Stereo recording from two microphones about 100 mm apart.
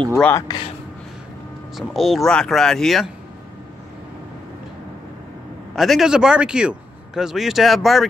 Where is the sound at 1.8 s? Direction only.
Centre (ahead or behind).